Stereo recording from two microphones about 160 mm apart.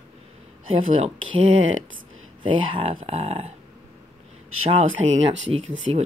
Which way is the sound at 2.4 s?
35° right (ahead or behind).